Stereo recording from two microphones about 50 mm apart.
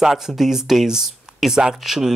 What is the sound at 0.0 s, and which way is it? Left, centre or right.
Speech, centre.